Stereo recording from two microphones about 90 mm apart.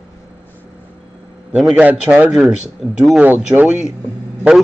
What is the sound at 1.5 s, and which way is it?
Speech, 5° right (ahead or behind).